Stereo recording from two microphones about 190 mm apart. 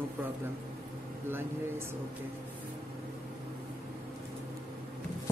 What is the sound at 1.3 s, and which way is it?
Speech, 10° right (ahead or behind).